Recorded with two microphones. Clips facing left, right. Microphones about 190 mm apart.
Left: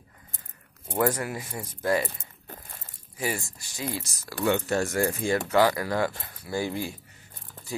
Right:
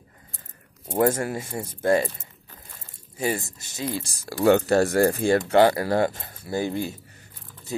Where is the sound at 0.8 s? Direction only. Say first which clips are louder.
Right 4 dB; 25° right (ahead or behind).